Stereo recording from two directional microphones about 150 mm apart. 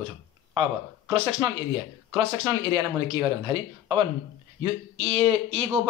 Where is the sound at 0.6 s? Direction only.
35° right (ahead or behind).